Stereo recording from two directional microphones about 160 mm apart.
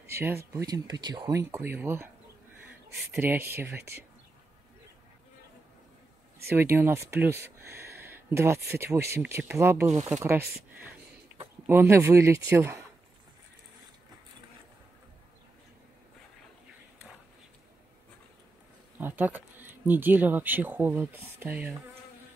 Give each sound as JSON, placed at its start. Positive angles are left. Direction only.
{"t": 0.0, "sound": "speech", "side_deg": -15}
{"t": 3.1, "sound": "speech", "side_deg": -10}
{"t": 6.5, "sound": "speech", "side_deg": -15}
{"t": 11.6, "sound": "speech", "side_deg": -15}
{"t": 18.9, "sound": "speech", "side_deg": -10}